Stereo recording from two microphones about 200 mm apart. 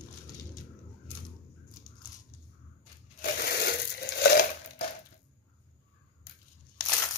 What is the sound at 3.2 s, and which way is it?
Crushing, 55° left (ahead or behind).